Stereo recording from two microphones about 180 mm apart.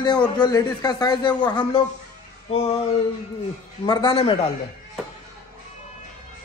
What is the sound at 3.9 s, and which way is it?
Speech, 30° left (ahead or behind).